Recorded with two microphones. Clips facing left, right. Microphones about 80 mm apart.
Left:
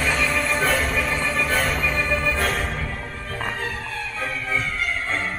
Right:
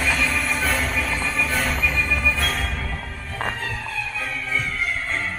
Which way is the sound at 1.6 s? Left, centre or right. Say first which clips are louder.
Left 1 dB; centre.